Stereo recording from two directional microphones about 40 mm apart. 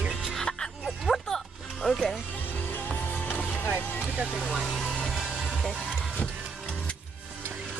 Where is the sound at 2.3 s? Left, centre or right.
Left.